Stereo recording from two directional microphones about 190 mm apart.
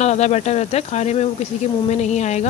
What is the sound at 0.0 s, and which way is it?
Speech, 35° left (ahead or behind).